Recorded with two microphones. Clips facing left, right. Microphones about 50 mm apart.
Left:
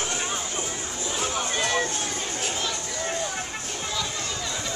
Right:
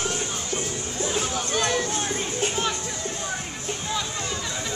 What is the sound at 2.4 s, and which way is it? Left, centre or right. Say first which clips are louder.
Music: right 5 dB; right.